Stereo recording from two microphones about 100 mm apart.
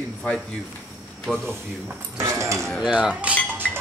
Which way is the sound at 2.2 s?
30° right (ahead or behind).